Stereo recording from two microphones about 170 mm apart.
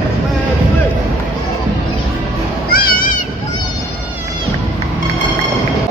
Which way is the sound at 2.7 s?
55° left (ahead or behind).